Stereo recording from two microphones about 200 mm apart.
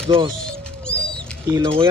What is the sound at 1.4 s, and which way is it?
Speech, 20° right (ahead or behind).